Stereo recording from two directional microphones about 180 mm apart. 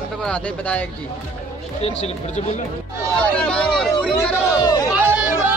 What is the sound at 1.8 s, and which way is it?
Speech, 35° left (ahead or behind).